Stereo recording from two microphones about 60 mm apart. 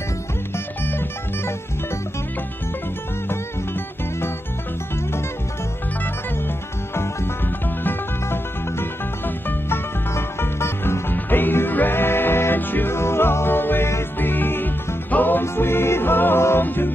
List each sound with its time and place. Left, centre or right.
0.8 s music: left
3.3 s music: left
7.8 s music: left
14.1 s music: left
15.4 s music: left